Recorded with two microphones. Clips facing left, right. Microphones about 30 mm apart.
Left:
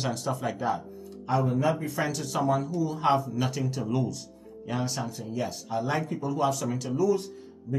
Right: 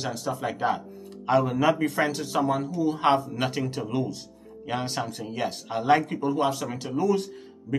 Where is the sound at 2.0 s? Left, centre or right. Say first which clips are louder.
Right 3 dB; centre.